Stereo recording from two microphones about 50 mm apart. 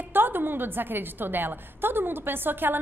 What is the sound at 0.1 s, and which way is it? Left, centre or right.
A woman's voice, right.